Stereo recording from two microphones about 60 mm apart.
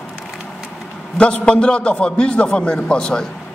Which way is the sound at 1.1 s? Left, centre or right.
Centre.